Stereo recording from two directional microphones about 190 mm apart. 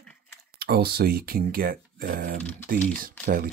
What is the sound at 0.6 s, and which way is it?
Speech, 55° right (ahead or behind).